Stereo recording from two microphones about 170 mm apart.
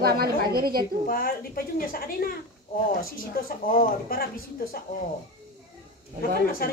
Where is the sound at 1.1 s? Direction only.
60° left (ahead or behind).